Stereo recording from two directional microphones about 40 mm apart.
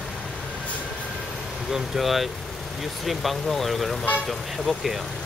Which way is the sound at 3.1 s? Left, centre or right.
Centre.